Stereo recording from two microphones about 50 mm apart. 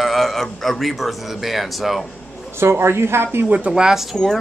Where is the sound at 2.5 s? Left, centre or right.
Right.